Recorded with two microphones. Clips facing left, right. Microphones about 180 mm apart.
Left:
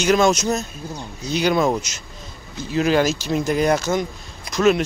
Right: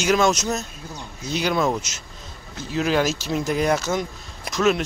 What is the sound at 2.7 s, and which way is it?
Speech, centre (ahead or behind).